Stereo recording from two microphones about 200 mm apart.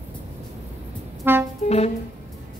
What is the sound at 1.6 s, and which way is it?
Music, 30° left (ahead or behind).